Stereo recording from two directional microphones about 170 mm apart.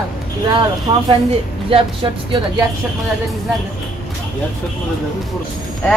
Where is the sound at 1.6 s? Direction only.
30° right (ahead or behind).